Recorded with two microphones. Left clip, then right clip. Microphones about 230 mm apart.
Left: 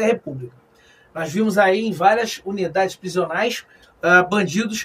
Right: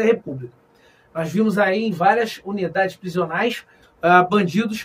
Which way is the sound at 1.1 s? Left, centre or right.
Centre.